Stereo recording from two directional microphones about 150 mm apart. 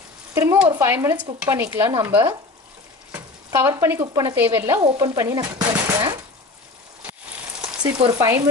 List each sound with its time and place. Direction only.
0.3 s sizzle: 20° right (ahead or behind)
0.6 s stir: 15° right (ahead or behind)
3.1 s speech: 15° right (ahead or behind)
4.9 s stir: 20° right (ahead or behind)
8.1 s stir: 25° right (ahead or behind)